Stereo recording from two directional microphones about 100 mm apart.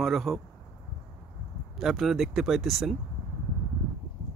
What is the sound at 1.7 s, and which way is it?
Speech, centre (ahead or behind).